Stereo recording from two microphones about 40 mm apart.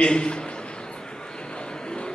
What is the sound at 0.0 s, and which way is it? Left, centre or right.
Speech, left.